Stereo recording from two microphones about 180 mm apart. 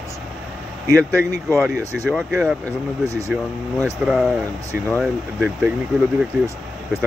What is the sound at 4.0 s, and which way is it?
Speech, 5° right (ahead or behind).